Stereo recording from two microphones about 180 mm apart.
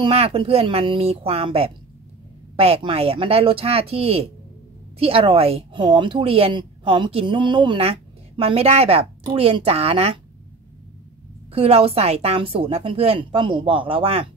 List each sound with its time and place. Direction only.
0.0 s a woman's voice: 35° right (ahead or behind)
11.5 s a woman's voice: 35° right (ahead or behind)